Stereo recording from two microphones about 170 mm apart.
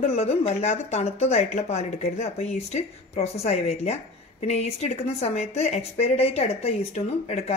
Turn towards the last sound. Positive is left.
turn(degrees=40)  # may be behind; listen again after turning